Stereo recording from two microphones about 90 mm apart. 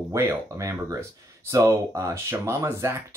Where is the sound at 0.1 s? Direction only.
35° right (ahead or behind).